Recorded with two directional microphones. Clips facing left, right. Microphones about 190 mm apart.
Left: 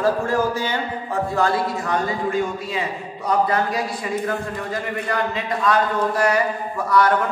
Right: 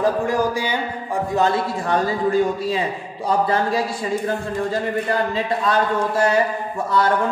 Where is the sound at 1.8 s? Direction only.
35° right (ahead or behind).